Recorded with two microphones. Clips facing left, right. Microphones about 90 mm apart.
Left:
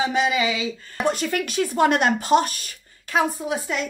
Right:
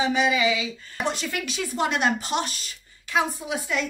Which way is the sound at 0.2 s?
30° left (ahead or behind).